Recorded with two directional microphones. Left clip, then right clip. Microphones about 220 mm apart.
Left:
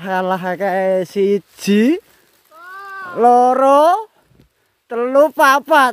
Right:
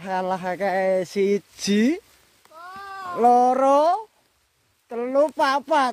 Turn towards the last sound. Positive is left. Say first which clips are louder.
# left 9 dB
turn(degrees=30)  # may be behind; listen again after turning